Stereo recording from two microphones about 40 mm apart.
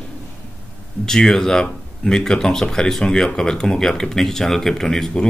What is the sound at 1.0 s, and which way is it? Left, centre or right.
Speech, centre.